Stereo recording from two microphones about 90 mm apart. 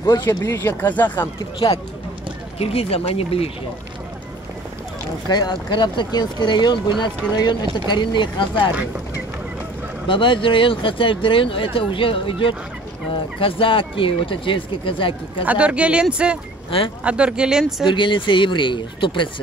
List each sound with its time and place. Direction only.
0.0 s speech: 40° left (ahead or behind)
0.7 s speech: 20° left (ahead or behind)
2.6 s speech: 90° left
5.3 s speech: 55° left (ahead or behind)
10.0 s speech: 70° left (ahead or behind)
15.4 s speech: 15° right (ahead or behind)
17.8 s speech: 65° left (ahead or behind)